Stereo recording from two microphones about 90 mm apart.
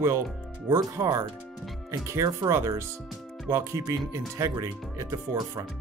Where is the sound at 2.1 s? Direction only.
35° right (ahead or behind).